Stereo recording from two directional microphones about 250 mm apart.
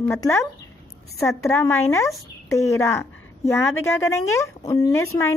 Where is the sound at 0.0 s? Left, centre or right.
Centre.